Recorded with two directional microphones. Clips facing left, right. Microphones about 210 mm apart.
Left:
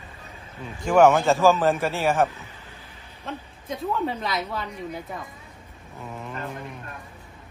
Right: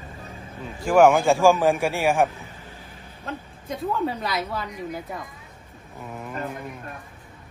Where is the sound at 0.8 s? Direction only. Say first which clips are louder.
Right 1 dB; 10° right (ahead or behind).